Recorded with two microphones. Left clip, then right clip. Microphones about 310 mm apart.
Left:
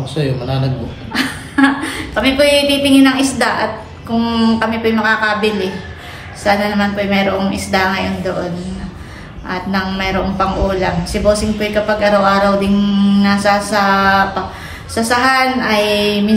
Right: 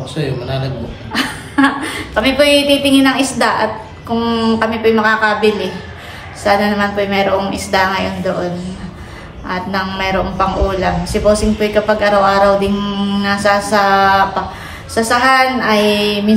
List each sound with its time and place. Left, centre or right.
0.1 s a man's voice: centre
9.5 s a man's voice: centre